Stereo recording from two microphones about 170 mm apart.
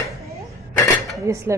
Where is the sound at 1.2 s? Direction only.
15° right (ahead or behind).